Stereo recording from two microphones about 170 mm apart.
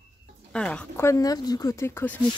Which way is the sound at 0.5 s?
5° left (ahead or behind).